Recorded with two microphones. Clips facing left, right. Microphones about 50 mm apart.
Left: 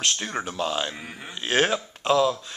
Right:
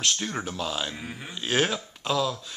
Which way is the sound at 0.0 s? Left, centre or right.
Centre.